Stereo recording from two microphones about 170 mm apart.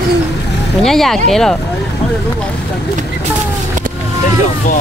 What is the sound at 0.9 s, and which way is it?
Speech, centre (ahead or behind).